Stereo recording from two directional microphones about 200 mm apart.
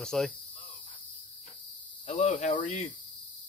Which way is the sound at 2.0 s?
35° left (ahead or behind).